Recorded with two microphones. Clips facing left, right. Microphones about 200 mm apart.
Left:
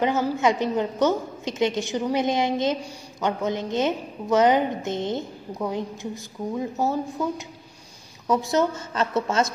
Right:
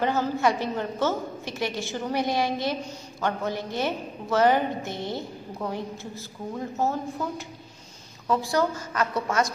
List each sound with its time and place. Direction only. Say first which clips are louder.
0.0 s a woman's voice: left 2 dB; 15° left (ahead or behind)